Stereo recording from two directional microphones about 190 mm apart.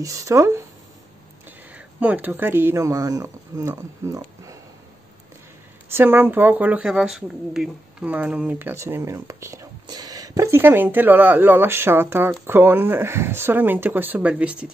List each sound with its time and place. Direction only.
0.0 s speech: 15° right (ahead or behind)
1.7 s speech: 5° right (ahead or behind)
5.9 s speech: 10° right (ahead or behind)